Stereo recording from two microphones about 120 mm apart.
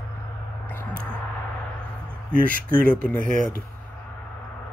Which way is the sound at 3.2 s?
90° right.